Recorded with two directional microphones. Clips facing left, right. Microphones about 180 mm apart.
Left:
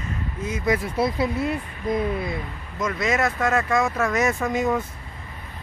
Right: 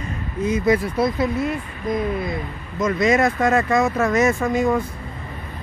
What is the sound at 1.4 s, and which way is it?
Speech, 30° left (ahead or behind).